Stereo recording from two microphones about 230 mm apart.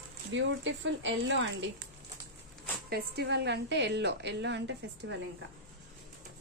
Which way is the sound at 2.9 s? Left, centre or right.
Right.